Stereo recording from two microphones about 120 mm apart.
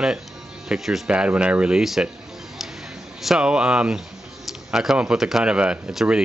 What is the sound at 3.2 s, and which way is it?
Speech, 5° right (ahead or behind).